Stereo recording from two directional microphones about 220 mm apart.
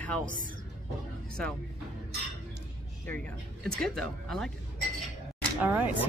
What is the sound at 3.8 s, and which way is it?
Speech, centre (ahead or behind).